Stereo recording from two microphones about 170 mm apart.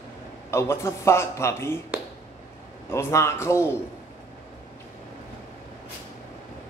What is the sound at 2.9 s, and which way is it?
Speech, 15° left (ahead or behind).